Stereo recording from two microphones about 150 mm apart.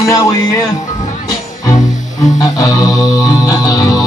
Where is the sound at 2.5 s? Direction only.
25° left (ahead or behind).